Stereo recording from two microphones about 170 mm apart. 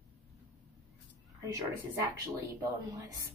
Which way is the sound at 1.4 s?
20° right (ahead or behind).